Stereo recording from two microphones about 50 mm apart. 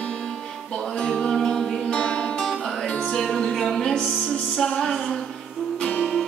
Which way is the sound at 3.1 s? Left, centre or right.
Centre.